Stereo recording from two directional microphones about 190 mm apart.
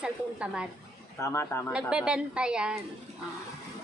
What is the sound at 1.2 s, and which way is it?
Speech, 15° left (ahead or behind).